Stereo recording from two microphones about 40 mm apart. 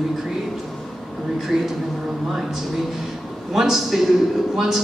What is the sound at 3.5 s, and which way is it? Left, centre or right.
Speech, centre.